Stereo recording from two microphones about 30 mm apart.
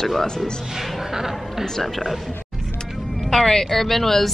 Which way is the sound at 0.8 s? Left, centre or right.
Centre.